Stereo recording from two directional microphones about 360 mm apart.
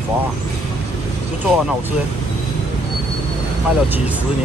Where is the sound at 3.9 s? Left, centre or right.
Centre.